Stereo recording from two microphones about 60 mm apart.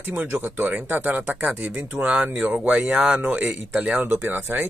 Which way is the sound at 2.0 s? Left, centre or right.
Centre.